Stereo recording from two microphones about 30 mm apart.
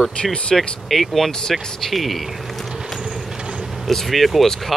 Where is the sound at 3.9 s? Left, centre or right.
Centre.